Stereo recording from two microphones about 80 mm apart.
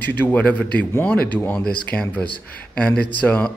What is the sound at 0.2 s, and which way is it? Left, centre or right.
Speech, left.